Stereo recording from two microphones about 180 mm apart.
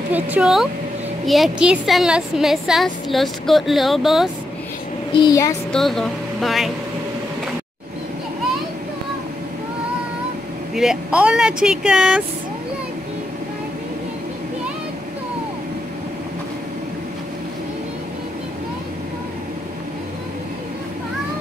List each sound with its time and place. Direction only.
0.1 s a woman's voice: 5° right (ahead or behind)
5.1 s speech: 20° left (ahead or behind)
5.7 s speech: centre (ahead or behind)
10.7 s a woman's voice: centre (ahead or behind)